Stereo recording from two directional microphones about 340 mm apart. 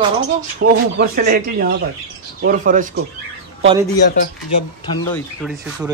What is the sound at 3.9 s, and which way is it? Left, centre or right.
Speech, left.